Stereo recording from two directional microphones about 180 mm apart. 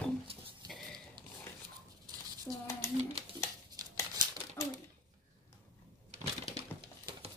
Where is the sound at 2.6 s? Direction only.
15° left (ahead or behind).